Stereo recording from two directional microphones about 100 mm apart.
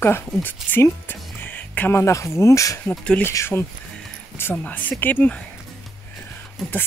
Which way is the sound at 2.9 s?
10° left (ahead or behind).